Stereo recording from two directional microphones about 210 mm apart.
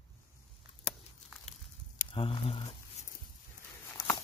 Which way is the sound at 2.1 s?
25° left (ahead or behind).